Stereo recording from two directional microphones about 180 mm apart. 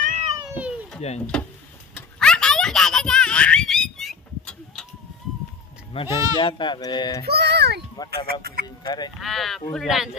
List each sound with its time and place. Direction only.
0.0 s cat: 45° right (ahead or behind)
0.6 s children playing: centre (ahead or behind)
1.3 s speech: 5° left (ahead or behind)
2.0 s a sound: 5° left (ahead or behind)
5.9 s speech: 30° left (ahead or behind)
7.2 s music: 65° right (ahead or behind)
8.3 s speech: 55° right (ahead or behind)
8.6 s speech: 20° left (ahead or behind)
9.2 s speech: centre (ahead or behind)